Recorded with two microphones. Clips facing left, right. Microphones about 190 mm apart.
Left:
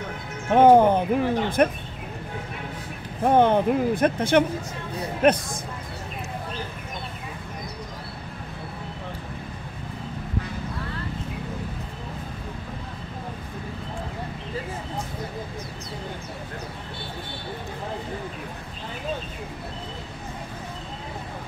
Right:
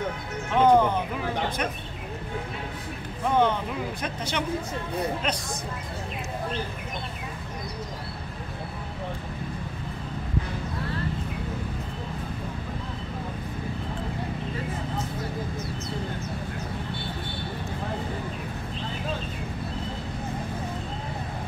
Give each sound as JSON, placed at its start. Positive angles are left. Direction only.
{"t": 0.5, "sound": "speech", "side_deg": 50}
{"t": 3.3, "sound": "speech", "side_deg": 55}